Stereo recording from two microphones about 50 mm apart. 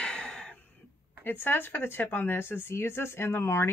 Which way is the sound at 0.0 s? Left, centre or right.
Centre.